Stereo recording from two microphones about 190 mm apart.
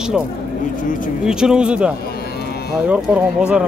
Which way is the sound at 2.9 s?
5° right (ahead or behind).